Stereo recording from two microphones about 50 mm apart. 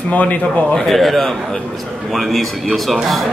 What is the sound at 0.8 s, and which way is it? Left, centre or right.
Speech, centre.